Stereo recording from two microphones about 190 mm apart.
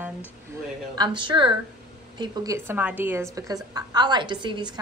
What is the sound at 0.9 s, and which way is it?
A woman's voice, 25° right (ahead or behind).